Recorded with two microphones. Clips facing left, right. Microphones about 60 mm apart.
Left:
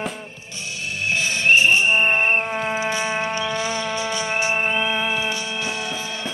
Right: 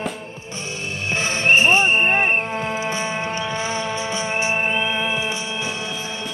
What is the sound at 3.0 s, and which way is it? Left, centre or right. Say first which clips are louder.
Music: left 1 dB; left.